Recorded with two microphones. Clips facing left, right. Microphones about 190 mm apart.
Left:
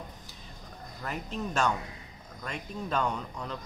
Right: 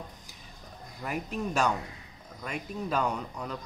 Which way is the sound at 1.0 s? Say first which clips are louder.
Right 2 dB; 10° right (ahead or behind).